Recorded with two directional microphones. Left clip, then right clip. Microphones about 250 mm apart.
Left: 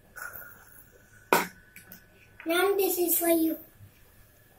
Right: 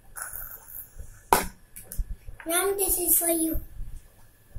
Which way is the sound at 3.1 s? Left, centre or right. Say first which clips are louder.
Left 2 dB; centre.